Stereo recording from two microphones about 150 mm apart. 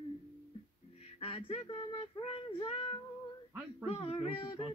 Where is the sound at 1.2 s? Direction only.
40° left (ahead or behind).